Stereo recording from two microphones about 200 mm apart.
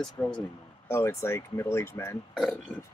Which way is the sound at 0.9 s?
15° left (ahead or behind).